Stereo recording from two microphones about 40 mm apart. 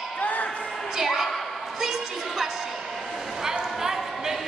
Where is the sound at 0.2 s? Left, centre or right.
Left.